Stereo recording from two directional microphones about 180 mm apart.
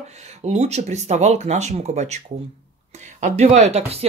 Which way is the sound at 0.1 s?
35° right (ahead or behind).